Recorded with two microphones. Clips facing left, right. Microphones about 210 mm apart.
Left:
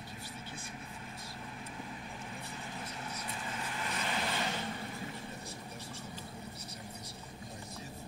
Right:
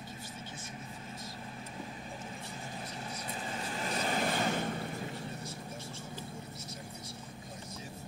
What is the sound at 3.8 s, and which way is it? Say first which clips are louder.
Vehicle: right 5 dB; 40° right (ahead or behind).